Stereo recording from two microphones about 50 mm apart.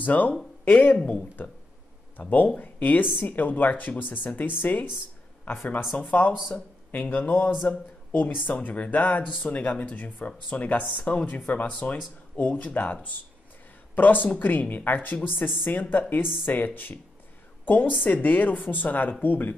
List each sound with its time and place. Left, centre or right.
0.0 s speech: left
5.9 s speech: left